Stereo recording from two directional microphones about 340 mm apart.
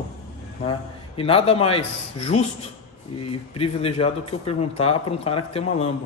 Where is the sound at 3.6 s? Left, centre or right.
Centre.